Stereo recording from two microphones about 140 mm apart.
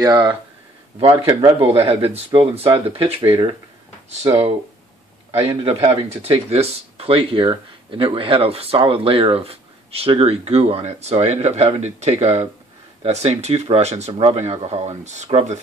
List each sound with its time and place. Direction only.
0.0 s speech: 25° right (ahead or behind)
0.9 s speech: 40° right (ahead or behind)
5.3 s speech: 40° right (ahead or behind)